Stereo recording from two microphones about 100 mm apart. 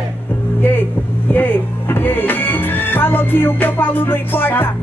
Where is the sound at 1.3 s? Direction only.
20° left (ahead or behind).